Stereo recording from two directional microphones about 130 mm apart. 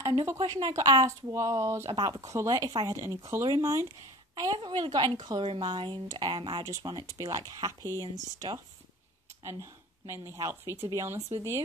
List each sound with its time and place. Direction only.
0.1 s a woman's voice: 25° right (ahead or behind)
1.9 s speech: 35° right (ahead or behind)
4.4 s speech: 35° right (ahead or behind)
9.4 s speech: 20° right (ahead or behind)